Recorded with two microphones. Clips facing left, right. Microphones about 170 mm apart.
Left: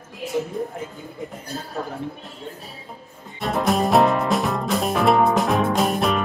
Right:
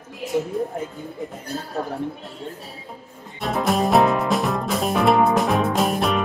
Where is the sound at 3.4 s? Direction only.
Centre (ahead or behind).